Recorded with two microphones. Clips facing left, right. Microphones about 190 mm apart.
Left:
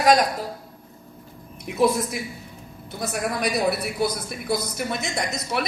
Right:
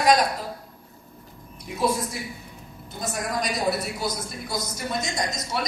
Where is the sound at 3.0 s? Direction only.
60° left (ahead or behind).